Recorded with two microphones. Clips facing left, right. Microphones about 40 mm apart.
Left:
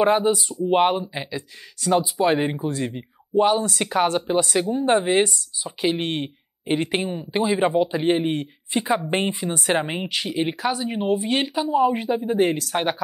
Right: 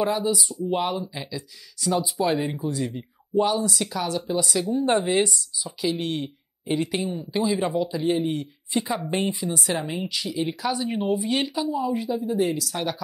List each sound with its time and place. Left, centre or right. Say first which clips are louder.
0.0 s speech: left 5 dB; left
1.0 s speech: left 3 dB; left